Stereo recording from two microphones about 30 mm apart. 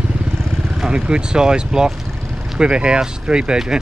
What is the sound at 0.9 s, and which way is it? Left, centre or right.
Speech, right.